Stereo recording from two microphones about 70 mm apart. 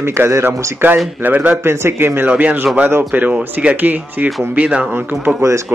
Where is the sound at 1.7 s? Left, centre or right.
Right.